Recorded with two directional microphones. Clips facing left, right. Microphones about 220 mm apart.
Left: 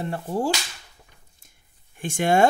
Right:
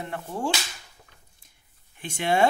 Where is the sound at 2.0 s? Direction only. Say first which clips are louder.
Left 4 dB; 45° left (ahead or behind).